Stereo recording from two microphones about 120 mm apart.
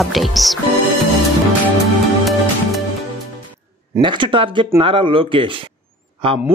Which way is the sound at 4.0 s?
40° right (ahead or behind).